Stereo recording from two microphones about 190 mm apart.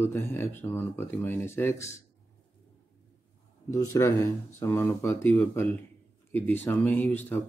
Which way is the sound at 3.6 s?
15° left (ahead or behind).